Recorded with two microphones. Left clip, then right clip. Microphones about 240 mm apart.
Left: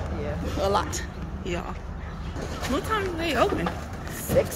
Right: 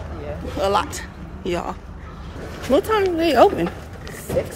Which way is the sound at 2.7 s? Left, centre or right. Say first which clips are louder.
Right 10 dB; right.